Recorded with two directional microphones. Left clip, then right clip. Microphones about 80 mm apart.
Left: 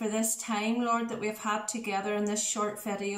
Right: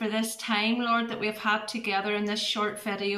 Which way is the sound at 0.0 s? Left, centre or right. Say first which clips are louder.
Right 2 dB; left.